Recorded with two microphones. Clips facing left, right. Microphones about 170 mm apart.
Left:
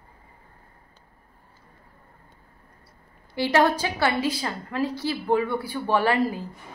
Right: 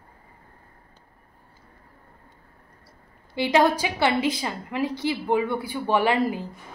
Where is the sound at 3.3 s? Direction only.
15° right (ahead or behind).